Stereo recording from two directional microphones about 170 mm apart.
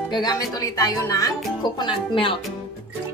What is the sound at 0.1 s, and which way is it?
A woman's voice, 25° left (ahead or behind).